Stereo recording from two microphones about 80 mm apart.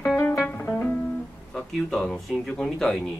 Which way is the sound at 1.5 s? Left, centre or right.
Centre.